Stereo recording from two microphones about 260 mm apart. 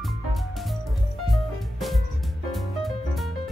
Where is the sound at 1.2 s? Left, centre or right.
Centre.